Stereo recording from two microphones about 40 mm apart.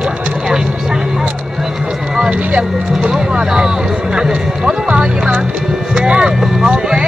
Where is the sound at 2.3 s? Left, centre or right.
Right.